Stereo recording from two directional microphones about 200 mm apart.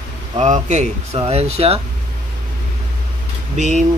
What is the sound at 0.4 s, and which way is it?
Speech, 35° right (ahead or behind).